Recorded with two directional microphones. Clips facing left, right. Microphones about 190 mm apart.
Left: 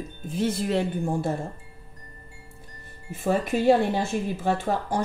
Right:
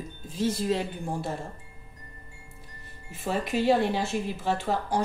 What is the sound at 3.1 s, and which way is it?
Speech, 50° left (ahead or behind).